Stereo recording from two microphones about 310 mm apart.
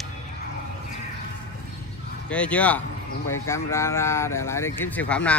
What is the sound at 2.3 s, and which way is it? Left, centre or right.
Speech, centre.